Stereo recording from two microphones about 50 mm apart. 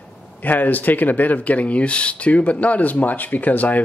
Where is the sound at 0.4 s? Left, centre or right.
Left.